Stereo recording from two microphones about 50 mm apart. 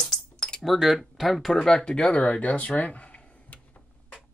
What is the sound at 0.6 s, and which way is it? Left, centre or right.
Speech, centre.